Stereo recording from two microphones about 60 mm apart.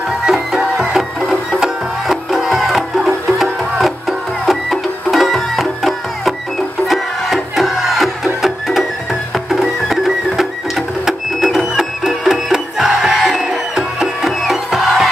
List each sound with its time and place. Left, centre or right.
0.2 s music: centre